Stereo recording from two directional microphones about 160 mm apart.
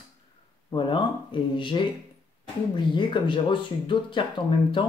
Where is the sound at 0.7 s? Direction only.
30° left (ahead or behind).